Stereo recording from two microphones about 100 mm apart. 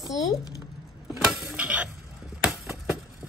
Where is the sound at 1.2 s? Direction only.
5° right (ahead or behind).